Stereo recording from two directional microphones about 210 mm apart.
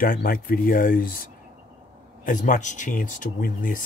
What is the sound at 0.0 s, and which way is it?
Speech, 40° left (ahead or behind).